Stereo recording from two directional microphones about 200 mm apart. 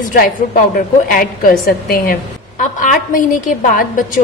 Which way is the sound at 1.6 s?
45° left (ahead or behind).